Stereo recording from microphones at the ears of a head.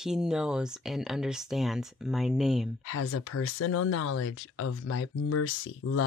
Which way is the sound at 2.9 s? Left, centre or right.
Left.